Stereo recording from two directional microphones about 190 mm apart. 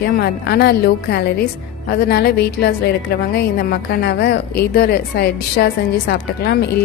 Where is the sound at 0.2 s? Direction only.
60° left (ahead or behind).